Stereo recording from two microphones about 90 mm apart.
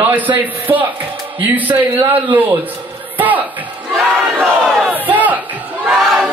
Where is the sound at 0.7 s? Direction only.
55° right (ahead or behind).